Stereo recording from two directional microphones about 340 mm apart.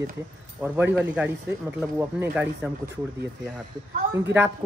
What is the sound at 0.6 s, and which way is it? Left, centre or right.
Speech, centre.